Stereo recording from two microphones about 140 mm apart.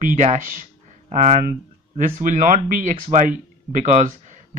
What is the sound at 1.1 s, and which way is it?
Speech, 55° right (ahead or behind).